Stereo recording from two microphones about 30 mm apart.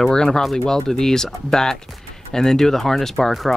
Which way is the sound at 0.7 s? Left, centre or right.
Centre.